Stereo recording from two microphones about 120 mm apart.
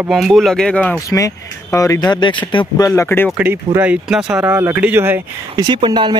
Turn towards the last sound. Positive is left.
turn(degrees=-40)  # may be behind; listen again after turning